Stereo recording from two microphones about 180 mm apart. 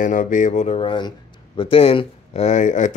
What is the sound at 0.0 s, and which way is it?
Speech, 45° left (ahead or behind).